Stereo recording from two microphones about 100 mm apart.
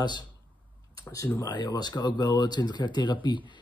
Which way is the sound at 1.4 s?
45° left (ahead or behind).